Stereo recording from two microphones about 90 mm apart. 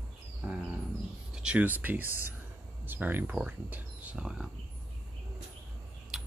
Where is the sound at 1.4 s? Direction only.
15° right (ahead or behind).